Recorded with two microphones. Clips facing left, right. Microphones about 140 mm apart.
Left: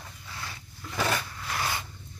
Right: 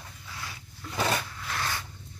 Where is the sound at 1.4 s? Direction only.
10° left (ahead or behind).